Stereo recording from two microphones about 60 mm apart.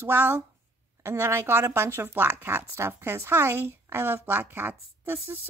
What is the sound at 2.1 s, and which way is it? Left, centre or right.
A woman's voice, right.